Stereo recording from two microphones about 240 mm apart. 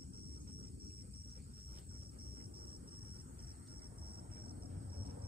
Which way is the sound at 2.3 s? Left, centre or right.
Right.